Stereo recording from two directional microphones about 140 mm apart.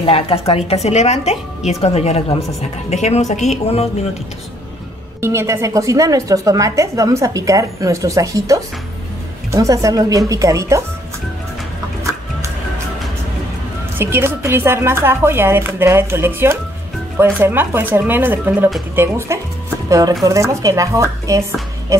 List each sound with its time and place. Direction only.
0.0 s speech: 40° left (ahead or behind)
5.2 s a woman's voice: 20° right (ahead or behind)
13.9 s a woman's voice: 15° right (ahead or behind)